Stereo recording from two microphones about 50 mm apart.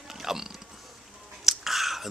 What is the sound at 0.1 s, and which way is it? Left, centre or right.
Biting, centre.